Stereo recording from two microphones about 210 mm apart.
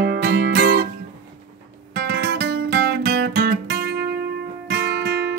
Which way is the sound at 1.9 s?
45° right (ahead or behind).